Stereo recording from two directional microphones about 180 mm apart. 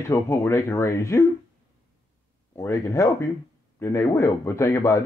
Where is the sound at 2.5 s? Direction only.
15° left (ahead or behind).